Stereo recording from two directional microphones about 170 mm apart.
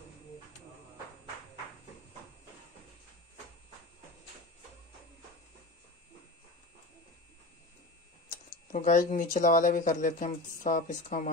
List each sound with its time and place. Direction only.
8.7 s speech: 50° left (ahead or behind)